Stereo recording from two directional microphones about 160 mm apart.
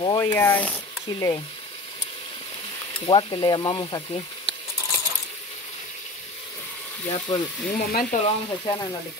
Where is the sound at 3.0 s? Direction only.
30° left (ahead or behind).